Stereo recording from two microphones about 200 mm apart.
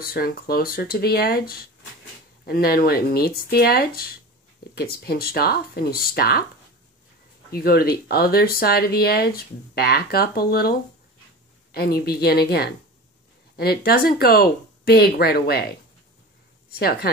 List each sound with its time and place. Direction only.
0.0 s speech: 50° left (ahead or behind)
7.5 s speech: 50° left (ahead or behind)
16.7 s speech: 50° left (ahead or behind)